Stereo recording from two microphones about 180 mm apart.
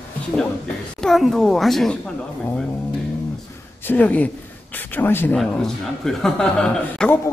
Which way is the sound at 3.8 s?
10° left (ahead or behind).